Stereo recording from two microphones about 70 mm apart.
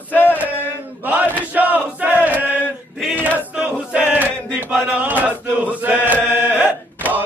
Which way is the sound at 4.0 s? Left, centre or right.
Right.